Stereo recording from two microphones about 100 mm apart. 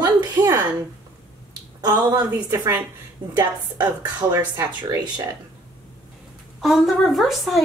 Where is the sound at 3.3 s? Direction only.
45° right (ahead or behind).